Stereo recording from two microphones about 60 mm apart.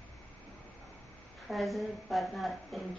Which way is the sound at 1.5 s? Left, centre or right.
Centre.